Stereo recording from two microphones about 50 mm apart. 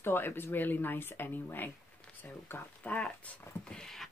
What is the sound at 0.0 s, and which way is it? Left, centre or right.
Speech, left.